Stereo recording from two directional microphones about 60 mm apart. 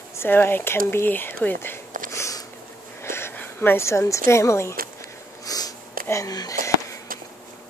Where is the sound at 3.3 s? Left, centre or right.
Left.